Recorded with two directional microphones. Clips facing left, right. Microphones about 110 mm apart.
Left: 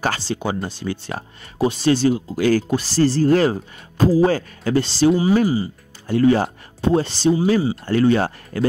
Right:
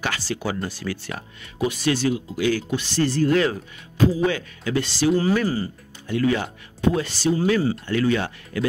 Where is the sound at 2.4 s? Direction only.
45° left (ahead or behind).